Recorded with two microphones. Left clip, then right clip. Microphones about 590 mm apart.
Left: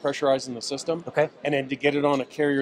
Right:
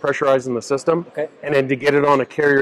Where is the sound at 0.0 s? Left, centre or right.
Right.